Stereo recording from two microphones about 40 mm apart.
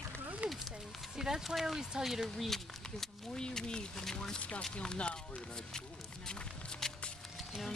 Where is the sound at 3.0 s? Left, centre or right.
Centre.